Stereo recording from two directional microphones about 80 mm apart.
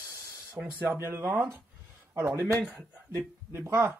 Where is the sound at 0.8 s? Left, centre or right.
Right.